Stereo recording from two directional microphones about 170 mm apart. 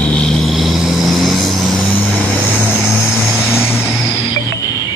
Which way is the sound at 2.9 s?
5° right (ahead or behind).